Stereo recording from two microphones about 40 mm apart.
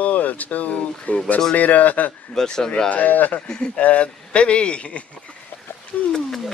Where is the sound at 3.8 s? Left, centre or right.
Left.